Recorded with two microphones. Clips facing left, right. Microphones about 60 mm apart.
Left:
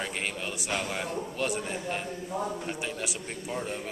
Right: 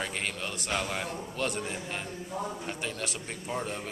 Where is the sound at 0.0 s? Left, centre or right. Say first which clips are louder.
Left 1 dB; centre.